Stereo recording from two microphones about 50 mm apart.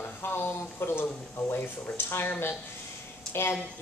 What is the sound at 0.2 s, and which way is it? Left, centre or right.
Speech, left.